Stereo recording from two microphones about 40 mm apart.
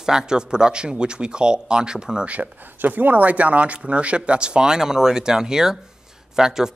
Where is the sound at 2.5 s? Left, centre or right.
Right.